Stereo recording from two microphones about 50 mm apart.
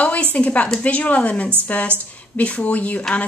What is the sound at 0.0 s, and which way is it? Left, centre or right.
A woman's voice, left.